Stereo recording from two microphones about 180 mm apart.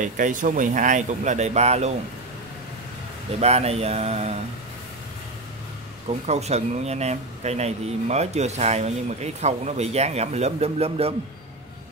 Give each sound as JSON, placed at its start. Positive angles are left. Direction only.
{"t": 0.0, "sound": "speech", "side_deg": -45}
{"t": 3.3, "sound": "speech", "side_deg": -35}
{"t": 6.2, "sound": "speech", "side_deg": -35}